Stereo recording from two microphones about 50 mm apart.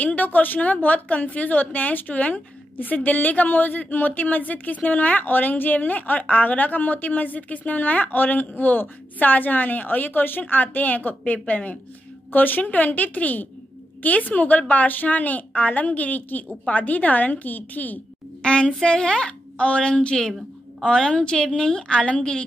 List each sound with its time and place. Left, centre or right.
0.0 s a woman's voice: left
18.4 s a woman's voice: centre